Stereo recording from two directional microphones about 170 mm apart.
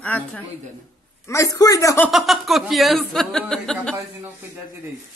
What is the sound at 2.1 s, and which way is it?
Speech, centre (ahead or behind).